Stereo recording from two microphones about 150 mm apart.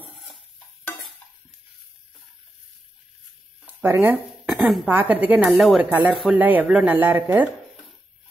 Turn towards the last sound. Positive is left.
turn(degrees=-15)  # may be behind; listen again after turning